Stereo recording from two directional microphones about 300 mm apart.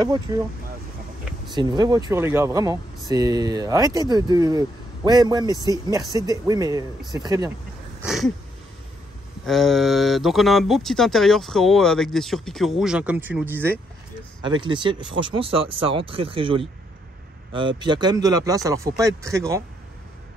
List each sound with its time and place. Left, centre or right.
1.5 s speech: centre
8.0 s wheeze: centre
9.5 s speech: centre